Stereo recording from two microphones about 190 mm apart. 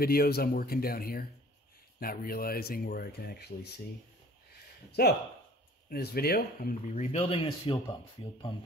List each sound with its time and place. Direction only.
0.0 s speech: 55° left (ahead or behind)
5.0 s speech: 55° left (ahead or behind); by 7.7 s 30° left (ahead or behind)